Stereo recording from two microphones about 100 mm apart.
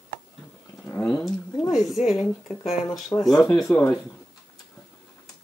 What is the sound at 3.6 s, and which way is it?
Speech, 25° left (ahead or behind).